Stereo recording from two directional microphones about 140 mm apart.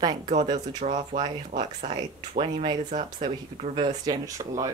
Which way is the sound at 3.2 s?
45° right (ahead or behind).